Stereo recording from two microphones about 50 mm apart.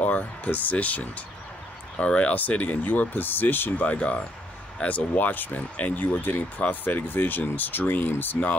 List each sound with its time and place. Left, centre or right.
0.0 s speech: left
2.0 s speech: left
3.8 s speech: left